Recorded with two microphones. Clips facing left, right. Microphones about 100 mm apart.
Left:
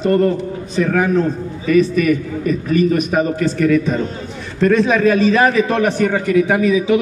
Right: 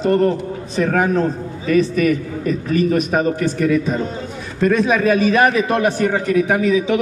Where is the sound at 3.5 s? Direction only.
15° right (ahead or behind).